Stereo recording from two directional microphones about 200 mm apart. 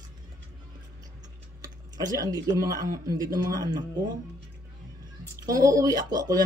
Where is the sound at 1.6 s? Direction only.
15° right (ahead or behind).